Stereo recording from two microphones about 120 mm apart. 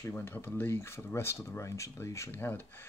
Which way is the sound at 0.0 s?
20° left (ahead or behind).